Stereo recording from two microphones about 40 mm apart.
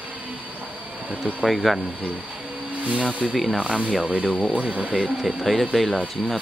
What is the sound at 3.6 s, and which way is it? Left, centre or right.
Speech, right.